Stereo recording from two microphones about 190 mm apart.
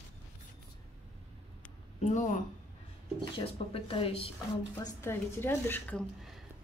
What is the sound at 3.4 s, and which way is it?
Speech, 30° left (ahead or behind).